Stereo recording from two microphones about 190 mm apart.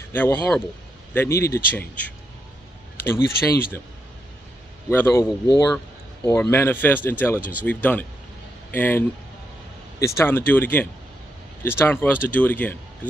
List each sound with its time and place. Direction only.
0.1 s speech: 10° left (ahead or behind)
4.9 s speech: 10° left (ahead or behind)